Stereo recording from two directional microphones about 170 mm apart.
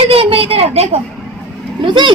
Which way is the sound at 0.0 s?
35° right (ahead or behind).